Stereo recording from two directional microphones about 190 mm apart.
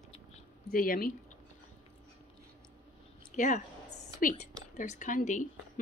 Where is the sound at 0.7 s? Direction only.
50° left (ahead or behind).